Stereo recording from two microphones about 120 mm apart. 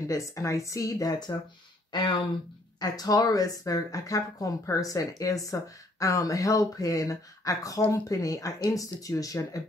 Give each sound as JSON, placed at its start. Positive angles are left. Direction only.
{"t": 0.1, "sound": "speech", "side_deg": 25}
{"t": 1.9, "sound": "speech", "side_deg": 40}